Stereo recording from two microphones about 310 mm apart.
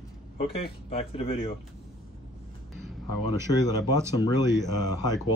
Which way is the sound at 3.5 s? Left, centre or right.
Centre.